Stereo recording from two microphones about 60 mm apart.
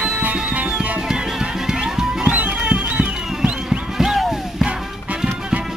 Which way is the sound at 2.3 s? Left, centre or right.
Centre.